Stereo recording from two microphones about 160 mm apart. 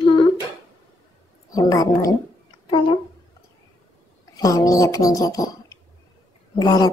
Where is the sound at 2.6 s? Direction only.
30° left (ahead or behind).